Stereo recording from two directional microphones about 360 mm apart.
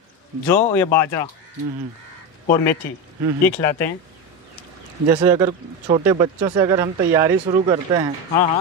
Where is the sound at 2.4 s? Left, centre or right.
Left.